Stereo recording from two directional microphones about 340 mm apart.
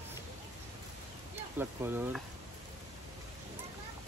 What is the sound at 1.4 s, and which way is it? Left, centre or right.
Speech, centre.